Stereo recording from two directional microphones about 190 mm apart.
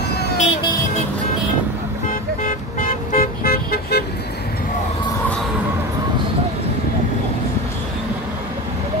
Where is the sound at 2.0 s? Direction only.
45° left (ahead or behind).